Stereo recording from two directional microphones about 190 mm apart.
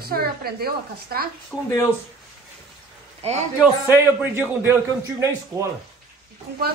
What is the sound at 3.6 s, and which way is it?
A man's voice, 10° right (ahead or behind).